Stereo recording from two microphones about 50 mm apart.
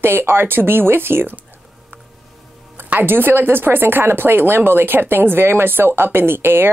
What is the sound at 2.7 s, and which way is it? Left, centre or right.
Speech, right.